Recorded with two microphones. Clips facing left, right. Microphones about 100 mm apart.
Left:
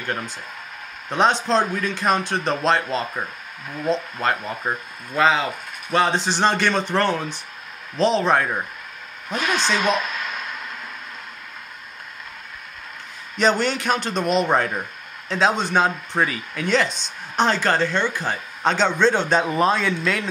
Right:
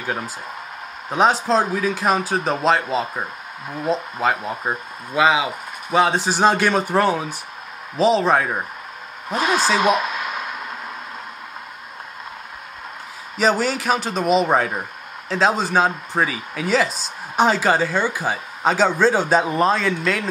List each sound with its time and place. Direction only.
0.0 s speech: 5° right (ahead or behind)
9.3 s speech: 30° right (ahead or behind)
10.1 s a sound: 5° right (ahead or behind)
13.4 s speech: 5° right (ahead or behind)